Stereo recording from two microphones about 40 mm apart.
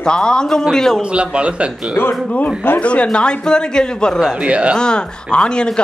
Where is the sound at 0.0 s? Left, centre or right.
Centre.